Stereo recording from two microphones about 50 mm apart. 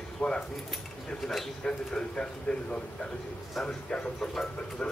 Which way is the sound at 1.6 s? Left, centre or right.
Centre.